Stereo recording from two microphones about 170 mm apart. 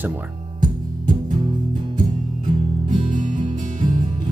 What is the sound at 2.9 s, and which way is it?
Music, 50° right (ahead or behind).